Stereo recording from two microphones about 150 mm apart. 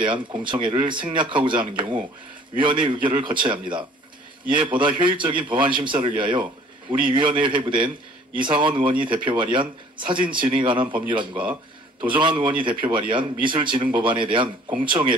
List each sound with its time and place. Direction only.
0.0 s speech: 30° right (ahead or behind)